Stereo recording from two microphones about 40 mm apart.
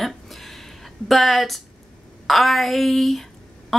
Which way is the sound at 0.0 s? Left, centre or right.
Centre.